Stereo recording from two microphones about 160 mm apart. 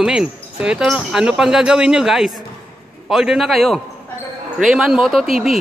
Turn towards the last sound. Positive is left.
turn(degrees=0)  # may be behind; listen again after turning